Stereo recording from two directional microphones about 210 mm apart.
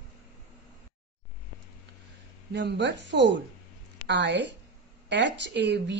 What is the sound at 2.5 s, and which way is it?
A woman's voice, 55° right (ahead or behind).